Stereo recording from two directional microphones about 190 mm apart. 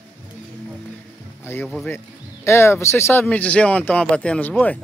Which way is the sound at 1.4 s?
10° left (ahead or behind).